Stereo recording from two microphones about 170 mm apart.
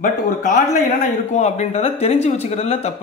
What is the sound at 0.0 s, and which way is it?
Speech, 45° left (ahead or behind).